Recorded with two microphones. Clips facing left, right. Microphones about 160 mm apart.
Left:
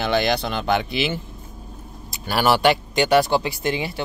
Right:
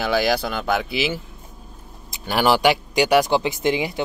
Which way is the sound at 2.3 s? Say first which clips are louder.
Even; 15° right (ahead or behind).